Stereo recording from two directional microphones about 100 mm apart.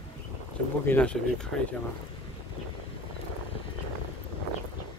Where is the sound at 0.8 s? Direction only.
15° left (ahead or behind).